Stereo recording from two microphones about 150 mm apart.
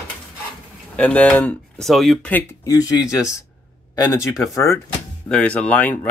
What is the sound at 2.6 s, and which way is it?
Speech, 25° left (ahead or behind).